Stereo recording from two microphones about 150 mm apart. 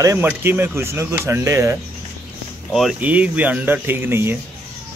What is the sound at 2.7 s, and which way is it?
Speech, 5° right (ahead or behind).